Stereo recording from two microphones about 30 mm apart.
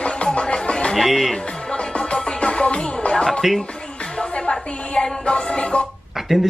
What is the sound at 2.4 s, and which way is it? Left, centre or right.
Music, left.